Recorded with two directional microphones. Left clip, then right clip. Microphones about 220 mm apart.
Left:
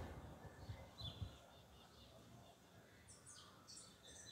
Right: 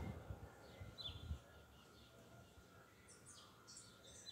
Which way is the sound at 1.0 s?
20° right (ahead or behind).